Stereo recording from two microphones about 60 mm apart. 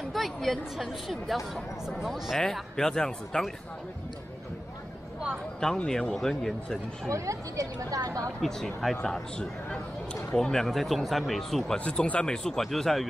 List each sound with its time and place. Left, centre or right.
0.1 s speech: centre
2.3 s speech: centre
5.6 s speech: centre
7.1 s speech: right
8.4 s speech: centre
11.8 s speech: centre